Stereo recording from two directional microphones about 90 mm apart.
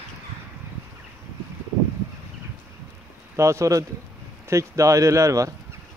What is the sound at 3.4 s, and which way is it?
Speech, 35° right (ahead or behind).